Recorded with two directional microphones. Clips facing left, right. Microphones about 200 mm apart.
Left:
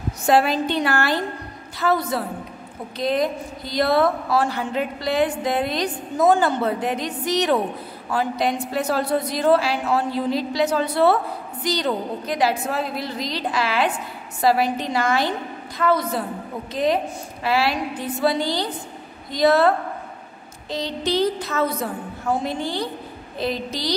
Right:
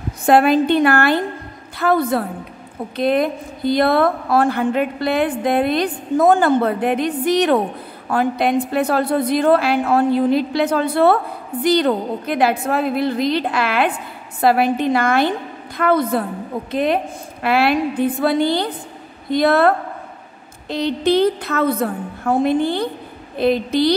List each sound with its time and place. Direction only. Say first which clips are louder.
0.3 s a woman's voice: right 6 dB; 55° right (ahead or behind)